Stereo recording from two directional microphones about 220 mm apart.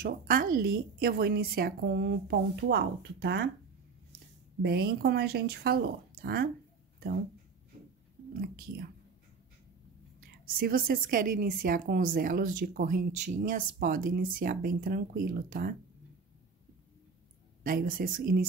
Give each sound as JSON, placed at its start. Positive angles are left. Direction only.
{"t": 0.0, "sound": "a woman's voice", "side_deg": -40}
{"t": 4.6, "sound": "a woman's voice", "side_deg": -45}
{"t": 8.3, "sound": "speech", "side_deg": -40}
{"t": 10.2, "sound": "a woman's voice", "side_deg": -40}
{"t": 17.6, "sound": "a woman's voice", "side_deg": -40}